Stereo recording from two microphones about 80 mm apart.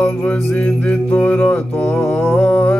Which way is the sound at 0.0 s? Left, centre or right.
Centre.